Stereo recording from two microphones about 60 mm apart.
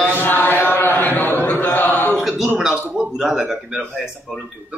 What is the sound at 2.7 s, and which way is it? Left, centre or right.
A man's voice, centre.